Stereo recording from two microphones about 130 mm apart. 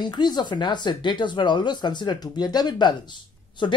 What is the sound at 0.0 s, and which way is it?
Speech, 35° left (ahead or behind).